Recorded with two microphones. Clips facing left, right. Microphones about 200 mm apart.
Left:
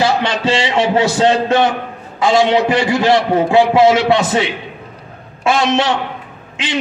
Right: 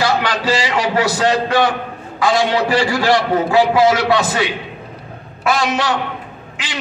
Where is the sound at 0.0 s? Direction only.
25° left (ahead or behind).